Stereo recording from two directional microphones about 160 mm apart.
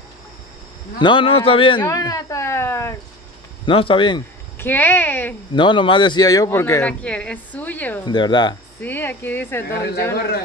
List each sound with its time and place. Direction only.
0.9 s a man's voice: 30° left (ahead or behind)
1.8 s a man's voice: 20° left (ahead or behind)
3.6 s a man's voice: 35° left (ahead or behind)
4.6 s a man's voice: 10° left (ahead or behind)
5.5 s a man's voice: 30° left (ahead or behind); by 8.0 s 10° left (ahead or behind)
8.0 s speech: 30° left (ahead or behind)
8.8 s a man's voice: 10° left (ahead or behind)
9.7 s a woman's voice: 90° left